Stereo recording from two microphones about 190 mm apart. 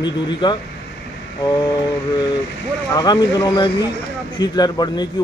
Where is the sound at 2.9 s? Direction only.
20° left (ahead or behind).